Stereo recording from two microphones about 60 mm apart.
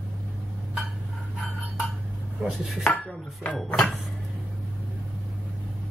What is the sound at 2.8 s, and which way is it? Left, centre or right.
Chopping, centre.